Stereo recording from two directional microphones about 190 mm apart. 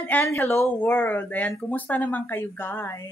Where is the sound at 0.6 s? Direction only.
5° left (ahead or behind).